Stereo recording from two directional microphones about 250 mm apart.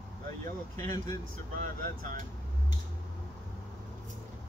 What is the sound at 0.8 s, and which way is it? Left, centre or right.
Speech, centre.